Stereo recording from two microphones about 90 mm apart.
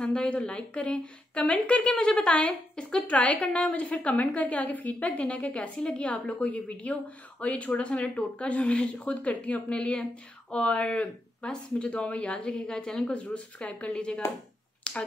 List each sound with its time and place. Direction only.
0.0 s speech: 10° left (ahead or behind)
14.8 s finger snapping: 10° left (ahead or behind)